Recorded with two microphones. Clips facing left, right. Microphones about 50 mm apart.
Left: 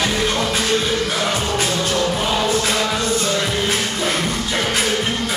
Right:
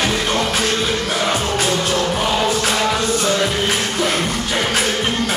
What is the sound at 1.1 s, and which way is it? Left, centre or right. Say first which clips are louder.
Music: right 2 dB; right.